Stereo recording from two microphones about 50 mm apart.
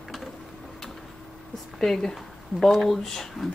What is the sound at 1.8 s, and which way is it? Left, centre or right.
Speech, centre.